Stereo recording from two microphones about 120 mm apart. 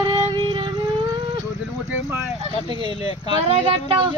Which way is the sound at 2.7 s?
45° left (ahead or behind).